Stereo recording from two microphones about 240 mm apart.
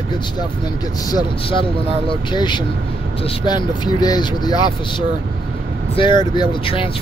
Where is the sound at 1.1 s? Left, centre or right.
Centre.